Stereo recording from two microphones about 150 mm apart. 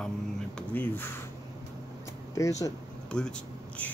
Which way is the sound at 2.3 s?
20° left (ahead or behind).